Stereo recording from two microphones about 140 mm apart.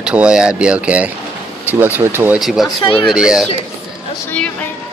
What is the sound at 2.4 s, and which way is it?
Speech, centre (ahead or behind).